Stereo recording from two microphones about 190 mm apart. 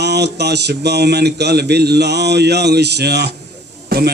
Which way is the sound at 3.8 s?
55° right (ahead or behind).